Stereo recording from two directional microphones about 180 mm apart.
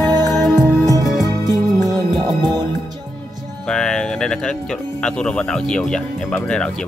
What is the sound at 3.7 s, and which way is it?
Speech, 5° left (ahead or behind).